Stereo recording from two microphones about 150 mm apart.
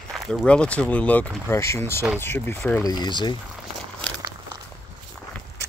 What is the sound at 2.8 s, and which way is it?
Speech, 30° left (ahead or behind).